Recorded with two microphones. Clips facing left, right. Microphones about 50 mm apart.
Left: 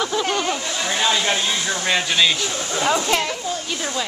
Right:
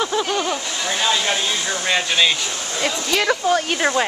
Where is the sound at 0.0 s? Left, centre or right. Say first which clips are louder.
Right 1 dB; centre.